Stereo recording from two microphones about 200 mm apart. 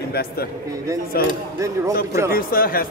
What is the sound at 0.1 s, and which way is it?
Speech, 50° left (ahead or behind).